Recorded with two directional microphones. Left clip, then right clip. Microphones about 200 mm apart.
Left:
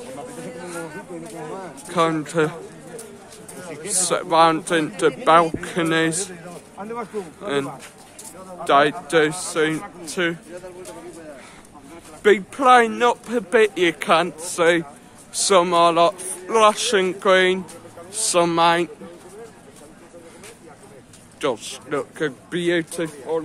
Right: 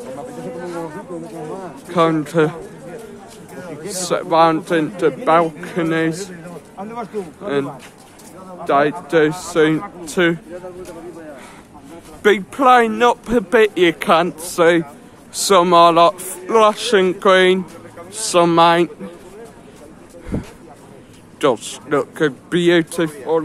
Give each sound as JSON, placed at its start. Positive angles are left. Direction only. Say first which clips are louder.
{"t": 1.9, "sound": "a man's voice", "louder": "right 4 dB", "side_deg": -5}
{"t": 3.9, "sound": "a man's voice", "louder": "right 2 dB", "side_deg": 0}
{"t": 9.1, "sound": "a man's voice", "louder": "right 4 dB", "side_deg": -10}
{"t": 12.2, "sound": "a man's voice", "louder": "right 2 dB", "side_deg": -15}
{"t": 16.4, "sound": "a man's voice", "louder": "right 3 dB", "side_deg": -10}
{"t": 21.4, "sound": "speech", "louder": "right 7 dB", "side_deg": -20}